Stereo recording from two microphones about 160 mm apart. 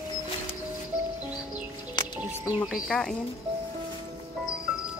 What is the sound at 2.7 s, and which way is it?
Speech, 5° left (ahead or behind).